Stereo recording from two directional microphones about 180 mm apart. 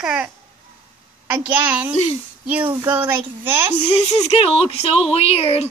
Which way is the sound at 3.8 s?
35° left (ahead or behind).